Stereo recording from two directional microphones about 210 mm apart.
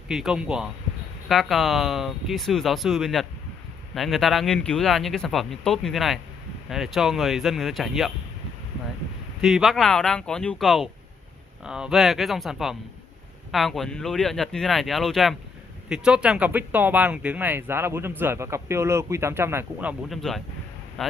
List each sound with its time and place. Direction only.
0.1 s speech: 5° right (ahead or behind)
9.4 s speech: centre (ahead or behind)